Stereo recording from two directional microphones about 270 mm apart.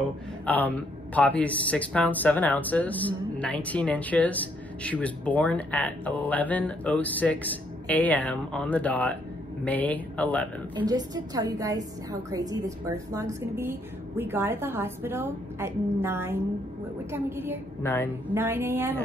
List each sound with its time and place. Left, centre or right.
0.5 s speech: centre
10.9 s speech: centre
17.8 s a woman's voice: centre
18.3 s speech: centre